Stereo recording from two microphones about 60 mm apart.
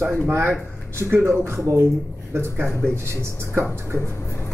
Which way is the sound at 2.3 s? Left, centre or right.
Right.